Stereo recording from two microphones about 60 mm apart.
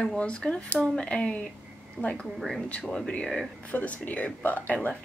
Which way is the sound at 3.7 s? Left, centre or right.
Left.